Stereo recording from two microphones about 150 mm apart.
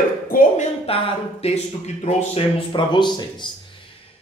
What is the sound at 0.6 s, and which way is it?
Speech, 40° left (ahead or behind).